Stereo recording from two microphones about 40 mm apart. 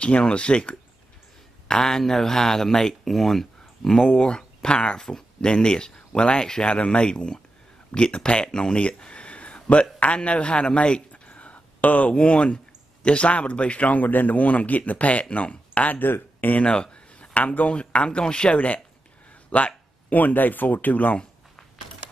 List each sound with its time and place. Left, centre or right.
0.0 s speech: left
1.7 s speech: centre
4.0 s speech: left
8.7 s a man's voice: left
11.1 s a sound: left
12.1 s a man's voice: left
16.0 s speech: left
16.6 s speech: left